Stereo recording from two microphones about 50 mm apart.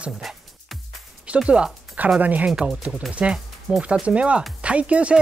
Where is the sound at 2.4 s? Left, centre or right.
Centre.